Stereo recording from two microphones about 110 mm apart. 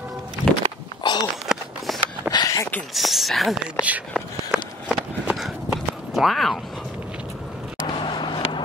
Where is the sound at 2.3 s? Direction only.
35° left (ahead or behind).